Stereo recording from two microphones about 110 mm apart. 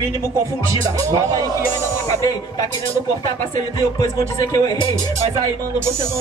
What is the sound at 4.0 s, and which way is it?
Speech, 35° left (ahead or behind).